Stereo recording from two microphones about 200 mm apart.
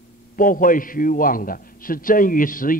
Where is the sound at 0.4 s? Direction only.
45° left (ahead or behind).